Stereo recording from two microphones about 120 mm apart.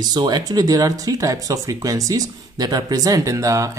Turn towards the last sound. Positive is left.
turn(degrees=-25)  # may be behind; listen again after turning